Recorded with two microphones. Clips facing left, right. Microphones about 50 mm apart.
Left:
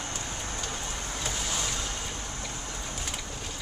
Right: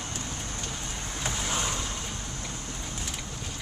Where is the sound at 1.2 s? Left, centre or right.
Right.